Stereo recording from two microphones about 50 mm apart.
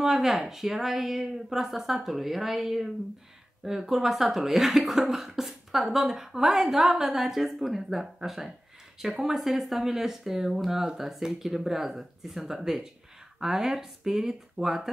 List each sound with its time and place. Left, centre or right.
0.0 s speech: centre
11.0 s speech: centre